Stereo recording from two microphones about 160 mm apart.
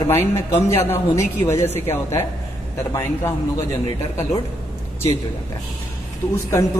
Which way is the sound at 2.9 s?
15° left (ahead or behind).